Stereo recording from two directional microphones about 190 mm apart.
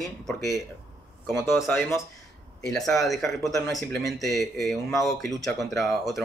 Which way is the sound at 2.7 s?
Centre (ahead or behind).